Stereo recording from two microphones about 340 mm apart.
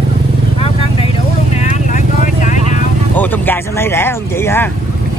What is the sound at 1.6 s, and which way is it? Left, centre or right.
Vehicle, left.